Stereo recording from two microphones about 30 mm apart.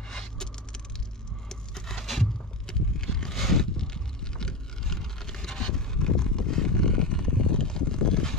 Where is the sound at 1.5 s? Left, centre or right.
Centre.